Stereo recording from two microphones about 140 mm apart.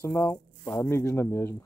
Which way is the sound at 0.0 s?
20° left (ahead or behind).